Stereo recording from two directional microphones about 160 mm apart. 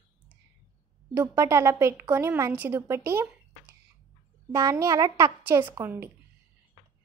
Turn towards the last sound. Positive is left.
turn(degrees=-15)  # may be behind; listen again after turning